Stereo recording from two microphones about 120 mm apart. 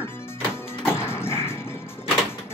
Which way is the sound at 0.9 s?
20° left (ahead or behind).